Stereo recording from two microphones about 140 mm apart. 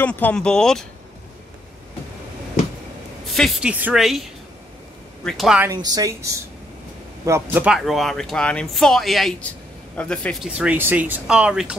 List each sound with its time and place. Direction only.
0.0 s speech: 15° left (ahead or behind)
3.3 s a man's voice: centre (ahead or behind)
3.7 s speech: 10° right (ahead or behind)
4.0 s speech: centre (ahead or behind)
5.8 s a woman's voice: 30° right (ahead or behind); by 7.8 s 10° right (ahead or behind)
7.8 s speech: centre (ahead or behind)
10.5 s speech: 10° right (ahead or behind)